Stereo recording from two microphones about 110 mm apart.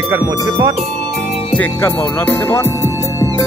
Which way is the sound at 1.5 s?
15° left (ahead or behind).